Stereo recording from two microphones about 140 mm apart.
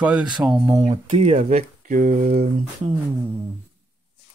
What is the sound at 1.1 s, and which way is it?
Speech, 45° right (ahead or behind).